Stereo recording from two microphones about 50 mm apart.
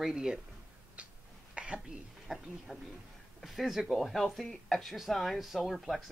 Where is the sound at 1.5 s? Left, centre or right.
Right.